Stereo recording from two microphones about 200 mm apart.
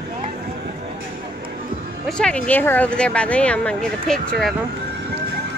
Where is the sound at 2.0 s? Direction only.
5° left (ahead or behind).